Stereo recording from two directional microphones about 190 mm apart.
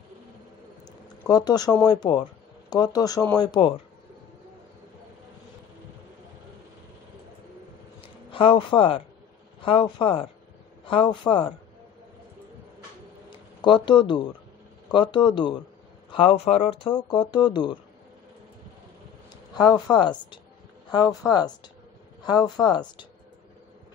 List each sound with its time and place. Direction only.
1.2 s speech: 20° left (ahead or behind)
8.3 s speech: 25° left (ahead or behind)
13.3 s a sound: 25° left (ahead or behind)
14.9 s speech: 25° left (ahead or behind)
19.5 s speech: 20° left (ahead or behind)